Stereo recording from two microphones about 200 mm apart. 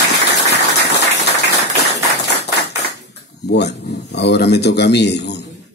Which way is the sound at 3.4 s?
55° left (ahead or behind).